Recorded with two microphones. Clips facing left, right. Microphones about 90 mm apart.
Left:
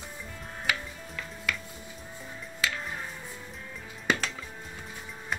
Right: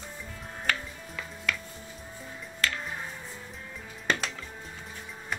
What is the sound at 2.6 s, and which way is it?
Music, 10° left (ahead or behind).